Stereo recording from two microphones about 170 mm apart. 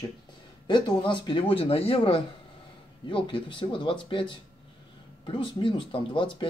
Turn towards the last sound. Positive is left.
turn(degrees=30)  # may be behind; listen again after turning